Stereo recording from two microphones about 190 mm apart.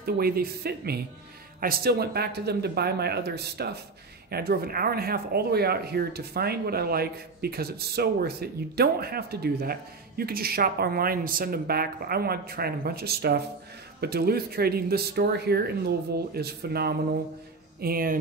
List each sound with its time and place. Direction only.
0.0 s speech: 55° right (ahead or behind)